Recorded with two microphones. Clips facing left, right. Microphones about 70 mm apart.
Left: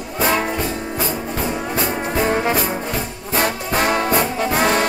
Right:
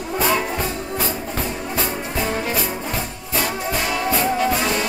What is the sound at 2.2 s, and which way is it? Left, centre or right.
Music, left.